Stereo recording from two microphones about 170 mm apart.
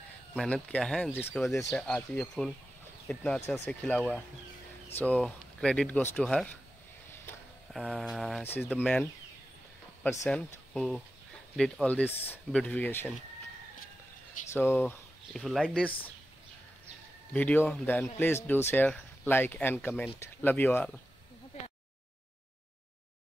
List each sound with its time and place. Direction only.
0.4 s speech: 5° left (ahead or behind)
3.3 s speech: 15° left (ahead or behind)
3.6 s speech: 5° left (ahead or behind)
7.7 s speech: centre (ahead or behind)
8.5 s speech: 10° left (ahead or behind)
10.2 s speech: 5° left (ahead or behind)
14.5 s speech: 15° left (ahead or behind)
15.3 s speech: centre (ahead or behind)
17.3 s speech: 10° left (ahead or behind)